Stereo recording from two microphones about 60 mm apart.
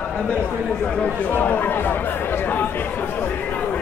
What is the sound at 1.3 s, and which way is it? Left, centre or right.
Chatter, left.